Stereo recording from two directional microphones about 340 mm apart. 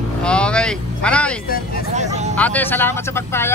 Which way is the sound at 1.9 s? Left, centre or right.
Centre.